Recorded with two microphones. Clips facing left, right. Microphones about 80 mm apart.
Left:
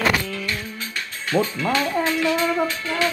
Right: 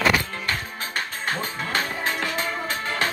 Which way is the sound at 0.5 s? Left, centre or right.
Right.